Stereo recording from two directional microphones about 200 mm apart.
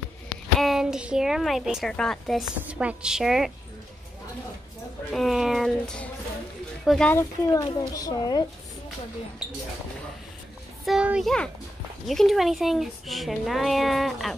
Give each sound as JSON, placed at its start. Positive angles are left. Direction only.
{"t": 0.6, "sound": "speech", "side_deg": 0}
{"t": 5.1, "sound": "a child's voice", "side_deg": 0}
{"t": 10.9, "sound": "speech", "side_deg": -5}